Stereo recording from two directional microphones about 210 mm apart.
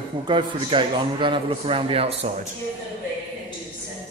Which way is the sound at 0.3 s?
25° right (ahead or behind).